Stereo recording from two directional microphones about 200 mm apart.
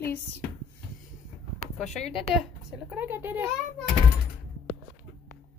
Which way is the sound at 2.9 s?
10° right (ahead or behind).